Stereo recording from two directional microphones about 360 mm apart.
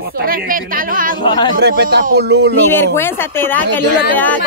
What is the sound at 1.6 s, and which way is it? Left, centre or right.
Speech, right.